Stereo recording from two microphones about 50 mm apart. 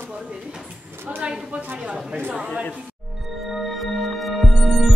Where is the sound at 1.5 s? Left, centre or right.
Right.